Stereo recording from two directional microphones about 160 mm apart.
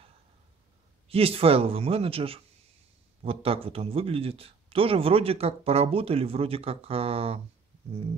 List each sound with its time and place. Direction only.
1.0 s a man's voice: 35° right (ahead or behind)